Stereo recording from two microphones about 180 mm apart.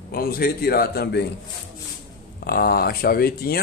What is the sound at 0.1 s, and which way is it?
Speech, 55° left (ahead or behind).